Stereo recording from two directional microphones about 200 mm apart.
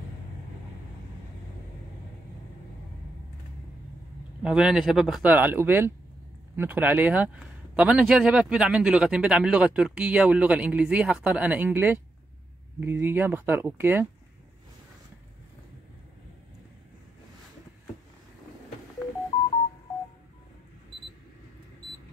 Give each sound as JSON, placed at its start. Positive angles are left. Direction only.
{"t": 4.4, "sound": "a man's voice", "side_deg": -5}